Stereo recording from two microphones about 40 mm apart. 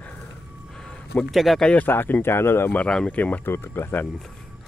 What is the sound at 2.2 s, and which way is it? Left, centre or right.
Speech, left.